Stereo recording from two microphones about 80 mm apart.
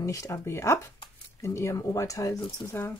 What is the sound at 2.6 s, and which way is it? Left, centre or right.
Speech, left.